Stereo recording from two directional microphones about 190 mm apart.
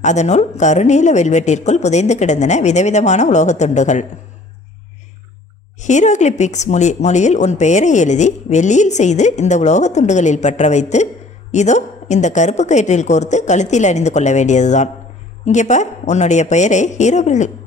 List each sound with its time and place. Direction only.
0.0 s speech: 40° left (ahead or behind)
5.8 s speech: 40° left (ahead or behind)